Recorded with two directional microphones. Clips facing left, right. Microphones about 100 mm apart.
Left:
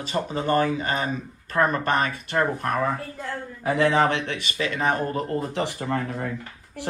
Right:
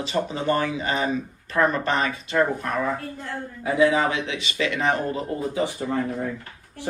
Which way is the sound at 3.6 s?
65° left (ahead or behind).